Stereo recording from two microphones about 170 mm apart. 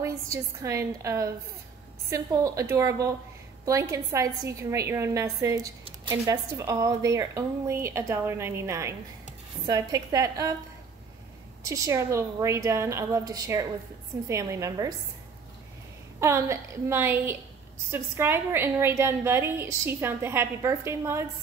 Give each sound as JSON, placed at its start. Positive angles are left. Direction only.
{"t": 0.0, "sound": "a woman's voice", "side_deg": -15}
{"t": 11.6, "sound": "a woman's voice", "side_deg": -20}
{"t": 16.2, "sound": "a woman's voice", "side_deg": -15}